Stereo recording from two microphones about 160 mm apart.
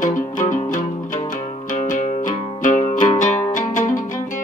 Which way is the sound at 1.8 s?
55° left (ahead or behind).